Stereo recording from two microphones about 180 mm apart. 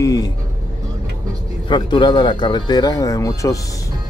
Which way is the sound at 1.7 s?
25° left (ahead or behind).